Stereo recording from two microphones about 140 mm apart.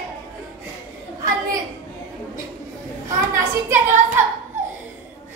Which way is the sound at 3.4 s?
15° right (ahead or behind).